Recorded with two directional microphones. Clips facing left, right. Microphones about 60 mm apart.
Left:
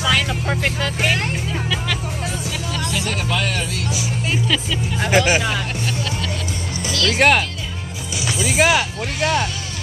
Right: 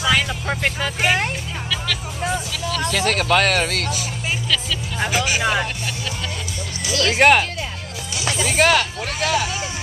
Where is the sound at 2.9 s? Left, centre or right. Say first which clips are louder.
Right 7 dB; right.